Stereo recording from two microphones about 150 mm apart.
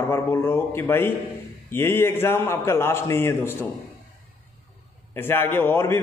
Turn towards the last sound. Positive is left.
turn(degrees=15)  # may be behind; listen again after turning